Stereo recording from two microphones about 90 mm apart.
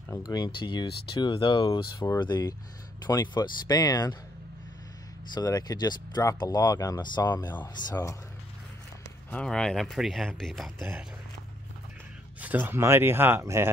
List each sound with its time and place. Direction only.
0.2 s speech: 50° left (ahead or behind)
0.5 s speech: 65° left (ahead or behind)
2.1 s speech: 60° left (ahead or behind)
3.1 s speech: 45° left (ahead or behind)
5.3 s speech: 45° left (ahead or behind)
7.9 s speech: 35° left (ahead or behind)
9.3 s speech: 10° left (ahead or behind)
12.4 s speech: 20° right (ahead or behind)